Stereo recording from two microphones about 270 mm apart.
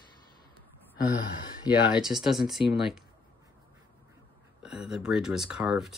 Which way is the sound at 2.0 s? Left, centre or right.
Centre.